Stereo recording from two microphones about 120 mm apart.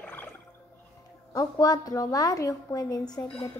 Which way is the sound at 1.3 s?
30° left (ahead or behind).